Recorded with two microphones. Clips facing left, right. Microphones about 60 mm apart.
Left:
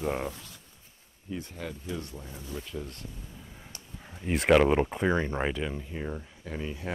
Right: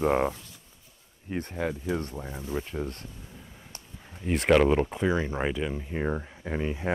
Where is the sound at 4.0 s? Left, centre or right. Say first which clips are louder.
Right 1 dB; centre.